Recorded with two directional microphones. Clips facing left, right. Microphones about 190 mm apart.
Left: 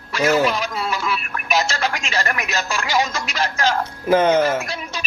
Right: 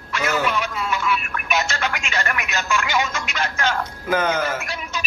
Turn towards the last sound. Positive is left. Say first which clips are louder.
# left 3 dB
turn(degrees=35)  # may be behind; listen again after turning